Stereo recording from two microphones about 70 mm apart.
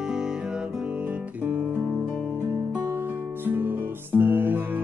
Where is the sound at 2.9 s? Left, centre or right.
Right.